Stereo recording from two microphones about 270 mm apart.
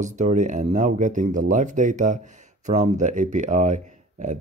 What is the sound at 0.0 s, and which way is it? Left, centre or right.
Speech, right.